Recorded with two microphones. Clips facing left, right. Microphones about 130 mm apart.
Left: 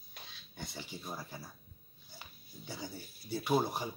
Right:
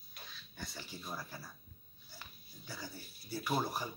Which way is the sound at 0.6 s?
15° left (ahead or behind).